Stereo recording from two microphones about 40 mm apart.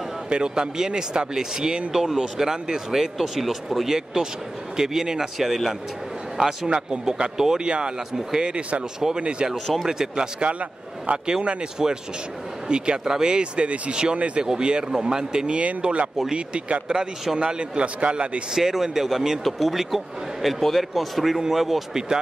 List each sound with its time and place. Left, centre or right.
0.3 s a man's voice: right
6.7 s speech: right
11.1 s speech: right
11.8 s speech: centre
12.6 s speech: right
14.4 s speech: right
15.5 s speech: right
18.5 s speech: centre